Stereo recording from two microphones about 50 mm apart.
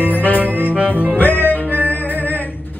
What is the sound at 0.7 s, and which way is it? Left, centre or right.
Music, right.